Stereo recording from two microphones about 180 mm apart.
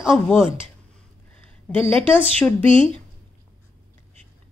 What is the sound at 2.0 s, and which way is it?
Speech, 10° left (ahead or behind).